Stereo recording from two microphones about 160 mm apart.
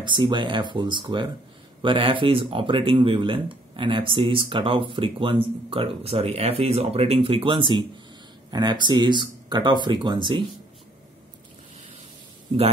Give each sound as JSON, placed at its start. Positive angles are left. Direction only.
{"t": 0.0, "sound": "speech", "side_deg": -30}